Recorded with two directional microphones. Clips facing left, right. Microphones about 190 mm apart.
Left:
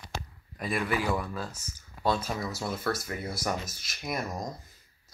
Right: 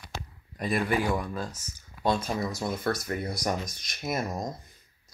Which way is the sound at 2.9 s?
Centre (ahead or behind).